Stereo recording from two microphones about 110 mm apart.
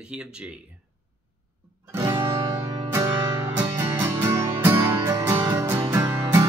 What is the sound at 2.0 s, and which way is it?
Music, 40° right (ahead or behind).